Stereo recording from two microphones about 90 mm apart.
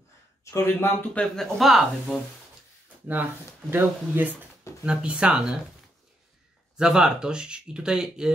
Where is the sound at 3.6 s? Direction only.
20° right (ahead or behind).